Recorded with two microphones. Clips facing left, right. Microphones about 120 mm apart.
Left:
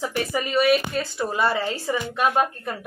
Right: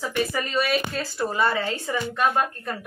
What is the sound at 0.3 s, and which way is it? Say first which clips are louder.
Speech: left 5 dB; 15° left (ahead or behind).